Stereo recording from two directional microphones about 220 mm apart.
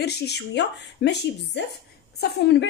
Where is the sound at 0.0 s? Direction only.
50° left (ahead or behind).